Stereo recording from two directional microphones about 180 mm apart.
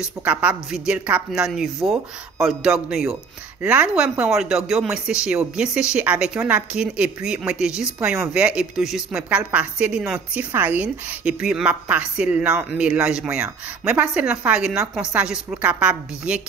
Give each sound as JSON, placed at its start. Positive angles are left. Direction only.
{"t": 0.0, "sound": "speech", "side_deg": -5}